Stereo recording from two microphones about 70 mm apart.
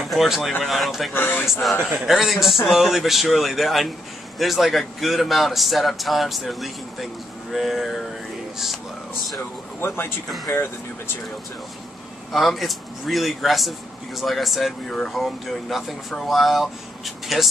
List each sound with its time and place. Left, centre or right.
0.1 s speech: centre
1.1 s speech: left
1.4 s speech: centre
9.4 s speech: left
12.3 s speech: centre